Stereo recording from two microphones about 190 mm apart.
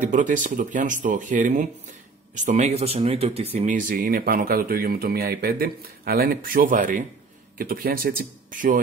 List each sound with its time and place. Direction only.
0.1 s speech: 40° right (ahead or behind)